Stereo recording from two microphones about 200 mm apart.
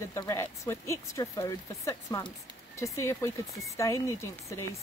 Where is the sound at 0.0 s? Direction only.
15° left (ahead or behind).